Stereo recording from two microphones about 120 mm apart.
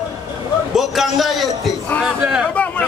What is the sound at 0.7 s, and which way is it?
A man's voice, centre (ahead or behind).